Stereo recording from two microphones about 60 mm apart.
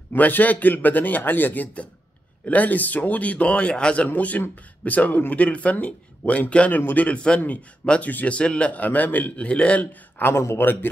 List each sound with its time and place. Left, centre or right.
0.1 s speech: left
8.4 s speech: centre
10.2 s a man's voice: left